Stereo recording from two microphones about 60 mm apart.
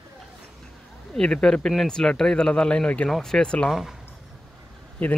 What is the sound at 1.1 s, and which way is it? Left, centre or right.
Speech, centre.